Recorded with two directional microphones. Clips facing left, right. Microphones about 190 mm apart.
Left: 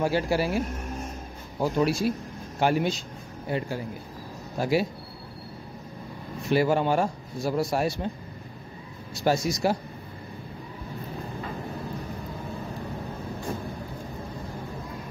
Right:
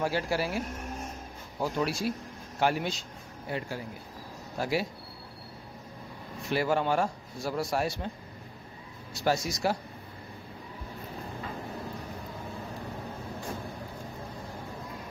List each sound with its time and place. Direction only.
0.0 s speech: 15° left (ahead or behind)
1.6 s a man's voice: 15° left (ahead or behind)
6.5 s speech: 15° left (ahead or behind)
9.2 s speech: 15° left (ahead or behind)